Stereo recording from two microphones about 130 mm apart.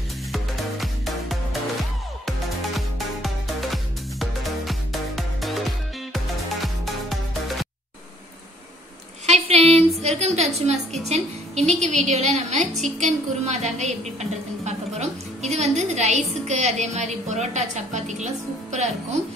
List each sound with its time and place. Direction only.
0.3 s music: centre (ahead or behind)
9.2 s a sound: 55° right (ahead or behind)
10.0 s a woman's voice: 60° right (ahead or behind)